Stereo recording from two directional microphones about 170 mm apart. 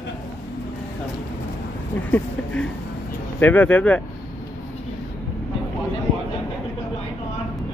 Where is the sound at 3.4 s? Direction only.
10° left (ahead or behind).